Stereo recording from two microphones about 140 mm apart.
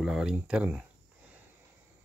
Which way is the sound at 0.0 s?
5° right (ahead or behind).